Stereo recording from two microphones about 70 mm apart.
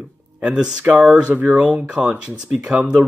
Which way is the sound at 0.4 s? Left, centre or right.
Centre.